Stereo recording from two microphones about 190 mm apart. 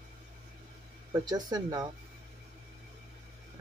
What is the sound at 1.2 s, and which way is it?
Speech, 20° right (ahead or behind).